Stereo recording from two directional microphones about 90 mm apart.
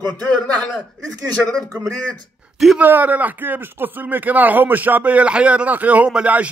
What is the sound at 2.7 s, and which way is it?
Speech, 20° right (ahead or behind).